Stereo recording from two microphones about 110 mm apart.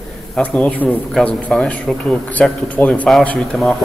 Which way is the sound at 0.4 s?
10° left (ahead or behind).